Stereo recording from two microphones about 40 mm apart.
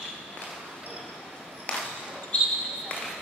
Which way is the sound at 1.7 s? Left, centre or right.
Left.